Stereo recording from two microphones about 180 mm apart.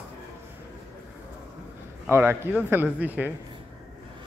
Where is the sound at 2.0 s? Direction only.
15° right (ahead or behind).